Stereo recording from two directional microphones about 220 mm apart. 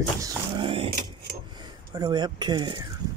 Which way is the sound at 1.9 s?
20° right (ahead or behind).